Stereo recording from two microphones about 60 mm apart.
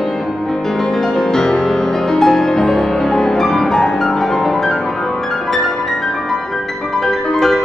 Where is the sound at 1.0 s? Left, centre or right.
Centre.